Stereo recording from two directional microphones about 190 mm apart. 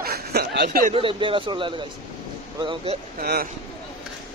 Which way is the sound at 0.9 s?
25° right (ahead or behind).